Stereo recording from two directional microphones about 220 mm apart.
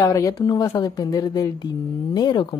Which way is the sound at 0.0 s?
15° left (ahead or behind).